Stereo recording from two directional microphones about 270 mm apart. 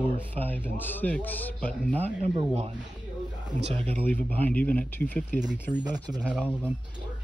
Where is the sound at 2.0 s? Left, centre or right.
Right.